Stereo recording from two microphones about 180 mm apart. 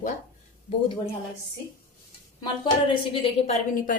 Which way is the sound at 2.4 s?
30° left (ahead or behind).